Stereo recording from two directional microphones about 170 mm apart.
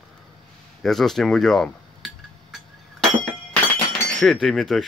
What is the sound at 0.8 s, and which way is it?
Dishes, centre (ahead or behind).